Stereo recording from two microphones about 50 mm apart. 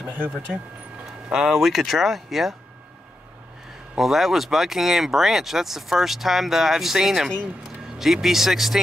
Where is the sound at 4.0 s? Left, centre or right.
Centre.